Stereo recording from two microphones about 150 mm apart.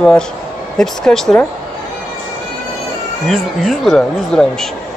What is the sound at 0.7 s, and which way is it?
Speech, 5° left (ahead or behind).